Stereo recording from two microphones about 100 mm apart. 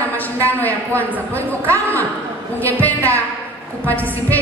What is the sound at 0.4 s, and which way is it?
A man's voice, 15° left (ahead or behind).